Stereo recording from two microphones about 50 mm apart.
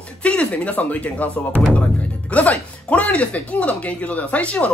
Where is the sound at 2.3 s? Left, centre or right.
Left.